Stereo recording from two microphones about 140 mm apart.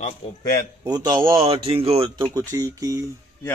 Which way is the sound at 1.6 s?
45° right (ahead or behind).